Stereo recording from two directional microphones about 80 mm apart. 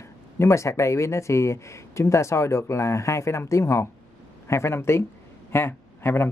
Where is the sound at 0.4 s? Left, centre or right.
Left.